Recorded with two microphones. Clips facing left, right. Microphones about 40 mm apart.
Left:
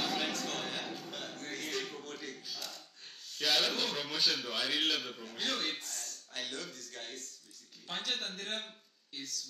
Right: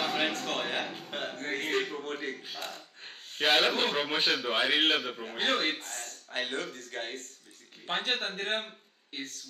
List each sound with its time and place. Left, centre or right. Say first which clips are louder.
0.0 s a man's voice: right 5 dB; right